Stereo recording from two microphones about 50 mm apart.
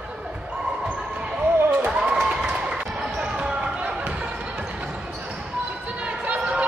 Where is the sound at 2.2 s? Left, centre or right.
Centre.